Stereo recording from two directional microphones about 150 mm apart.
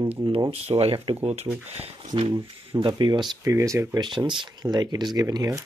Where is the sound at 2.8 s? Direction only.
30° right (ahead or behind).